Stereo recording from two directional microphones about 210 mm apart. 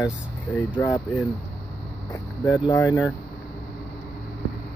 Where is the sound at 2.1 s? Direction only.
15° left (ahead or behind).